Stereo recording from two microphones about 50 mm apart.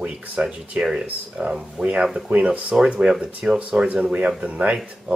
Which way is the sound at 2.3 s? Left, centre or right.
Right.